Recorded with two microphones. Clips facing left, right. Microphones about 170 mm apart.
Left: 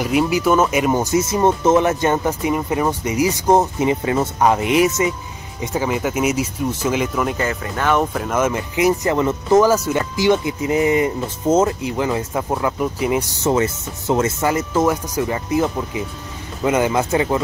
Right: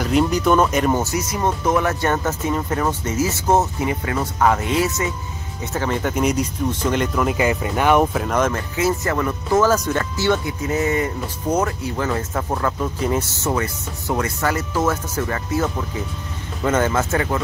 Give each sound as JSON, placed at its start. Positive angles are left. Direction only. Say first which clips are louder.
{"t": 0.0, "sound": "speech", "louder": "left 1 dB", "side_deg": 5}
{"t": 1.1, "sound": "speech", "louder": "left 6 dB", "side_deg": 25}
{"t": 7.3, "sound": "speech", "louder": "right 3 dB", "side_deg": -15}
{"t": 8.1, "sound": "speech", "louder": "left 1 dB", "side_deg": 0}